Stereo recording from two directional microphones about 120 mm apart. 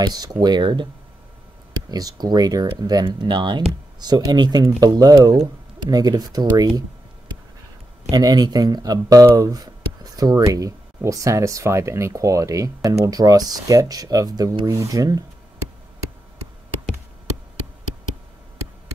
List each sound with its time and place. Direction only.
0.0 s speech: 35° right (ahead or behind)
1.9 s speech: 35° right (ahead or behind)
8.1 s speech: 35° right (ahead or behind)